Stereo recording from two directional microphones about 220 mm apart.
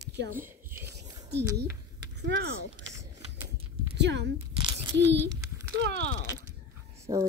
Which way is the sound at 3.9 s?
50° right (ahead or behind).